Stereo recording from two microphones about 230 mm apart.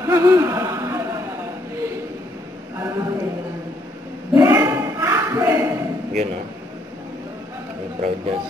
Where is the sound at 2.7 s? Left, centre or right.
Centre.